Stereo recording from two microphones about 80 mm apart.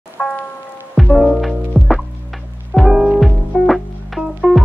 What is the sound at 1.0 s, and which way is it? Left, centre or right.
Music, centre.